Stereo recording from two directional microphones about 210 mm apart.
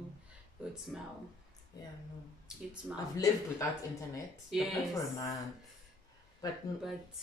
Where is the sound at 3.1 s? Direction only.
15° left (ahead or behind).